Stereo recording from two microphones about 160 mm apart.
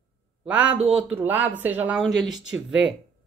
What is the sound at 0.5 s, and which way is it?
Speech, 10° right (ahead or behind).